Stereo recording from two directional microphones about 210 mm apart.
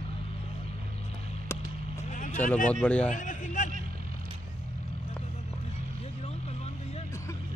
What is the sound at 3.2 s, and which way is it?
Speech, 35° left (ahead or behind).